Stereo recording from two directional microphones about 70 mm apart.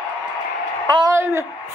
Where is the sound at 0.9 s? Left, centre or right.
Right.